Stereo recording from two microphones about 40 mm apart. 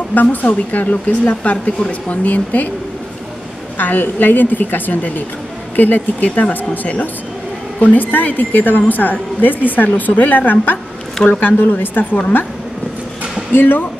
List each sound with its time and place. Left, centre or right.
0.1 s a woman's voice: left
3.7 s a woman's voice: left
6.2 s speech: left
6.5 s a woman's voice: left
11.5 s a woman's voice: left
13.5 s speech: left